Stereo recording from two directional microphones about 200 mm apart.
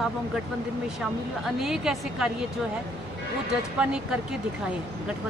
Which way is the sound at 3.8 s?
5° right (ahead or behind).